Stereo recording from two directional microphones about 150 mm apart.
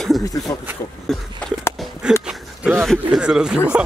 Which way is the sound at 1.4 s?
5° left (ahead or behind).